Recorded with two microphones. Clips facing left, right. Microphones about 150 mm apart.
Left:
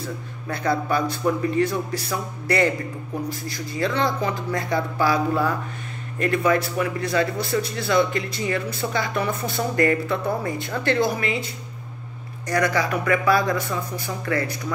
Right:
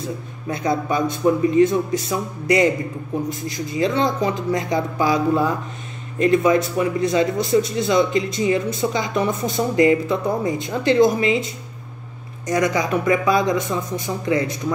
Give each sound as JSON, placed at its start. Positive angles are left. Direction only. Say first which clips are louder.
{"t": 0.5, "sound": "speech", "louder": "right 2 dB", "side_deg": -20}